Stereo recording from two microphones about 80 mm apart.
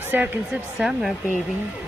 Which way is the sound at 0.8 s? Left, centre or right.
Centre.